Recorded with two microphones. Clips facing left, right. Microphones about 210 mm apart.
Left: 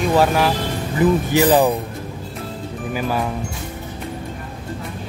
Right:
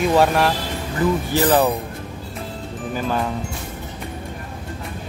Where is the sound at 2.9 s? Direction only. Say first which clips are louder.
Left 1 dB; 10° left (ahead or behind).